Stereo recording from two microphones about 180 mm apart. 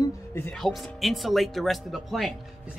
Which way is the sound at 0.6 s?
Centre (ahead or behind).